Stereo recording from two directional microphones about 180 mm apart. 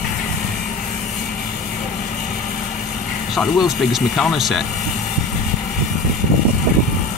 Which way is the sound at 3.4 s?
Centre (ahead or behind).